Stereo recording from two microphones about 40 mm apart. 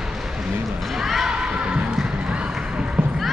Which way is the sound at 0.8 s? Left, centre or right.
Centre.